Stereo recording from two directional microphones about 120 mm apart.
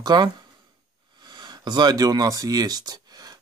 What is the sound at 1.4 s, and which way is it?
Speech, 35° right (ahead or behind).